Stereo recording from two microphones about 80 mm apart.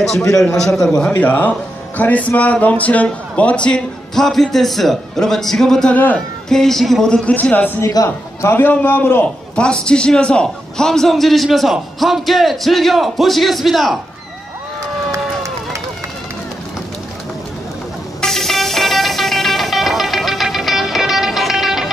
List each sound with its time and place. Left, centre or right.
0.4 s a man's voice: centre
1.1 s a man's voice: left
7.9 s a man's voice: left
8.5 s a man's voice: left
9.6 s a man's voice: centre
15.0 s run: right
18.2 s music: centre